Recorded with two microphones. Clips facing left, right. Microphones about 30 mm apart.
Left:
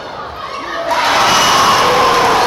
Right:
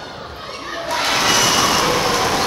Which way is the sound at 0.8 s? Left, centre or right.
Centre.